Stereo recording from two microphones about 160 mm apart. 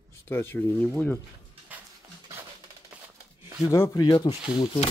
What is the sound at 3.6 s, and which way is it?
Speech, 15° left (ahead or behind).